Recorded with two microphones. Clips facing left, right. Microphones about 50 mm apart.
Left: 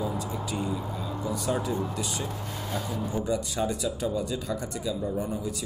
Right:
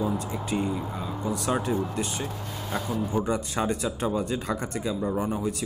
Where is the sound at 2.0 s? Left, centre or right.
Right.